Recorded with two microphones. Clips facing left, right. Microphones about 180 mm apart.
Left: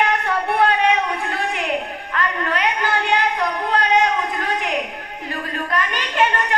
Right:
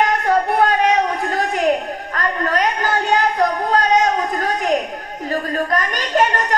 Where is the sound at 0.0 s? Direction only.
40° right (ahead or behind).